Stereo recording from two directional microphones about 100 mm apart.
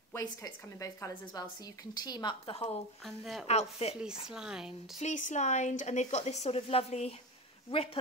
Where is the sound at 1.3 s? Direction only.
40° left (ahead or behind).